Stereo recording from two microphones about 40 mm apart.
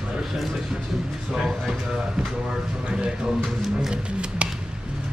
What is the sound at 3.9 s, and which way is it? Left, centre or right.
Music, right.